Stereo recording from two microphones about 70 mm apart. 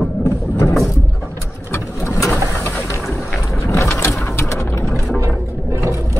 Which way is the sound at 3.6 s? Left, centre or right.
Left.